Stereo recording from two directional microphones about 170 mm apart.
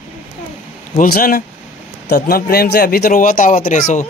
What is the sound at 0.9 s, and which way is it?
Speech, 60° left (ahead or behind).